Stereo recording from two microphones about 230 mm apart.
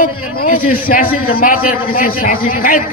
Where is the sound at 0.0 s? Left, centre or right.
Left.